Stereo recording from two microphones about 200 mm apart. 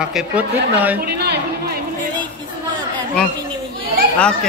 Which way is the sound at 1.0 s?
55° right (ahead or behind).